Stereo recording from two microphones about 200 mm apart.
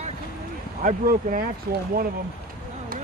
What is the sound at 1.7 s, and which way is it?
Speech, 50° right (ahead or behind).